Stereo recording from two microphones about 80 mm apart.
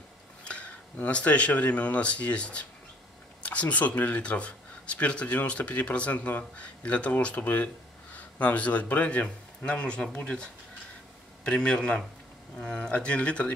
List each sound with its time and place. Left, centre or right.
0.4 s speech: centre